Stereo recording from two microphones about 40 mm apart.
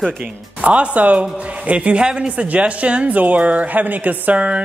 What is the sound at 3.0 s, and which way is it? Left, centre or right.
A woman's voice, right.